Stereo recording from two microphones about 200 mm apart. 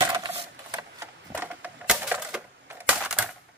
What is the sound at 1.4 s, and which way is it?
Typewriter, 10° right (ahead or behind).